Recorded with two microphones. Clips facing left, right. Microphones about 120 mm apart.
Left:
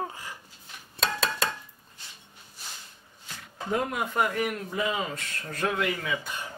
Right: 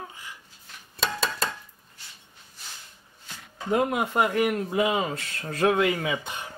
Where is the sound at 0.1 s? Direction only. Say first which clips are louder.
Left 3 dB; 40° left (ahead or behind).